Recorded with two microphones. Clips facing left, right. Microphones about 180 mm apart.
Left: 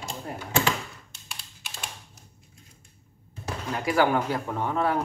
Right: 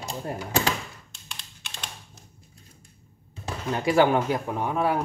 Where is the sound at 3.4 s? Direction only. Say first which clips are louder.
Right 3 dB; 25° right (ahead or behind).